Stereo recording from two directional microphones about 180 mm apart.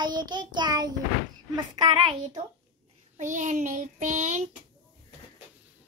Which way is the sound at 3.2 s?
45° right (ahead or behind).